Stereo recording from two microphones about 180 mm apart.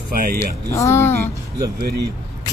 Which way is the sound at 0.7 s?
15° left (ahead or behind).